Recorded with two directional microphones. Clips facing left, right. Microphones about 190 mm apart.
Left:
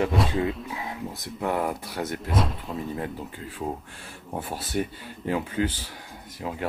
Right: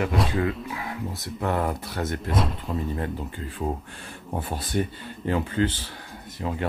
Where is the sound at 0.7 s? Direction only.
20° left (ahead or behind).